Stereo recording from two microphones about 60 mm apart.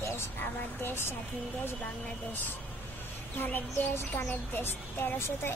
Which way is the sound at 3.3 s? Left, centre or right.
Left.